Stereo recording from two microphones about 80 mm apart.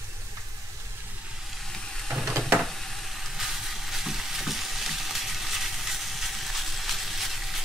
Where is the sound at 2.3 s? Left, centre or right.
Right.